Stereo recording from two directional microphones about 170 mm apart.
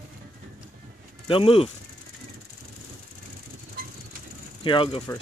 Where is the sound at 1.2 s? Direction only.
30° left (ahead or behind).